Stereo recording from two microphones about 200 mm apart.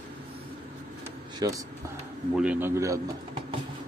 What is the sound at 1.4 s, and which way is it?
Speech, 20° right (ahead or behind).